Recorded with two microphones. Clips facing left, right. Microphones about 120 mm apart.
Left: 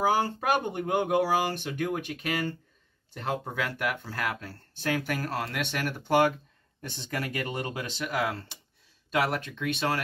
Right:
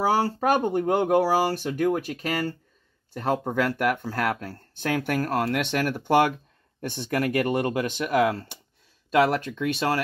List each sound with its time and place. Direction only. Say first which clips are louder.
0.0 s speech: right 3 dB; 35° right (ahead or behind)